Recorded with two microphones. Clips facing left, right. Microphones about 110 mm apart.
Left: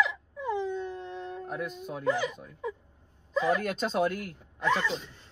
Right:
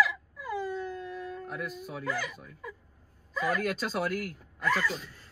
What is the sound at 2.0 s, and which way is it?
Speech, 25° left (ahead or behind).